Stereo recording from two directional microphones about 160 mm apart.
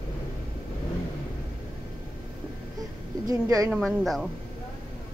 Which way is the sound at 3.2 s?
20° right (ahead or behind).